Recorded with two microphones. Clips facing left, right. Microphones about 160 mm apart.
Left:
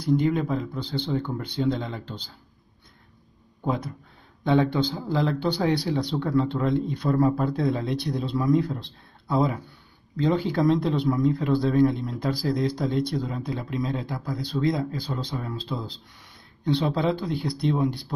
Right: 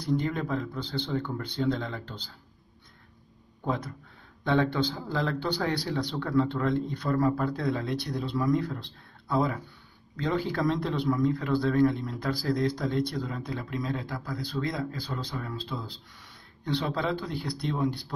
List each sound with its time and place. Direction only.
0.3 s speech: 15° left (ahead or behind)
3.6 s speech: 15° left (ahead or behind)